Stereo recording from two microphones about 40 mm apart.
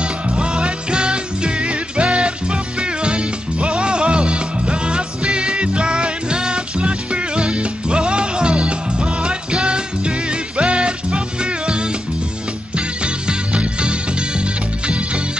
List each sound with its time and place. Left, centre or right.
0.0 s music: right